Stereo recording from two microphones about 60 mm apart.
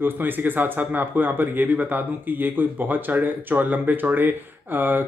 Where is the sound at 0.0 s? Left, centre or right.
Right.